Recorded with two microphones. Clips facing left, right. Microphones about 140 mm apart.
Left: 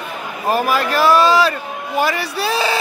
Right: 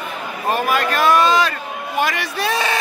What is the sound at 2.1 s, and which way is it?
Speech, 35° left (ahead or behind).